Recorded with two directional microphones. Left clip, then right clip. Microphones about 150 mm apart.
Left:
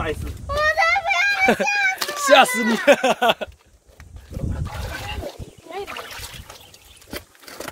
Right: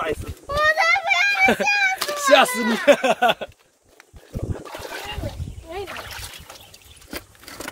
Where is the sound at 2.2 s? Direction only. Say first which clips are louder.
Left 2 dB; 30° left (ahead or behind).